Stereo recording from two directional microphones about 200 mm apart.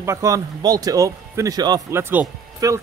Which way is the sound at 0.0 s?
15° right (ahead or behind).